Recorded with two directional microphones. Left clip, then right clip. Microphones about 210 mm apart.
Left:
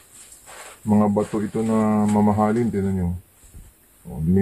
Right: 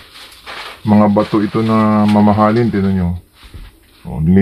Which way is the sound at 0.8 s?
30° right (ahead or behind).